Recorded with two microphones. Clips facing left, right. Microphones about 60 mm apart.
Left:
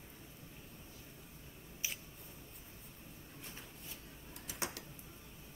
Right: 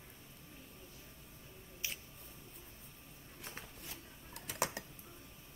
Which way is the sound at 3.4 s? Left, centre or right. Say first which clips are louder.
Right 4 dB; right.